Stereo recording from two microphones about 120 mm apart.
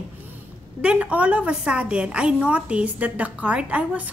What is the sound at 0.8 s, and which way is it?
A woman's voice, 10° right (ahead or behind).